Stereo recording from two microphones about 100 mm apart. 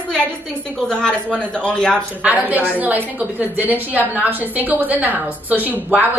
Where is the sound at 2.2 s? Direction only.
15° right (ahead or behind).